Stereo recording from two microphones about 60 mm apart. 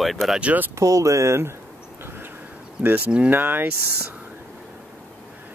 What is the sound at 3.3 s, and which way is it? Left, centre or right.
Speech, right.